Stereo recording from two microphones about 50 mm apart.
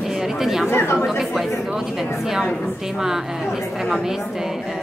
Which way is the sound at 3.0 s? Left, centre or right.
Centre.